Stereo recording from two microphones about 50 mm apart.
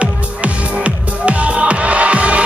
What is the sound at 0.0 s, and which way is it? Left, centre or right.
Music, right.